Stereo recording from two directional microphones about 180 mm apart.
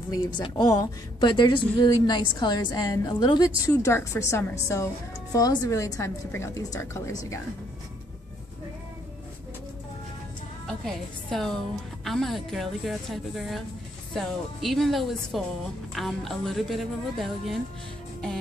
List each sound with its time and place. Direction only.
0.1 s a woman's voice: 25° left (ahead or behind)
10.7 s a woman's voice: 5° left (ahead or behind)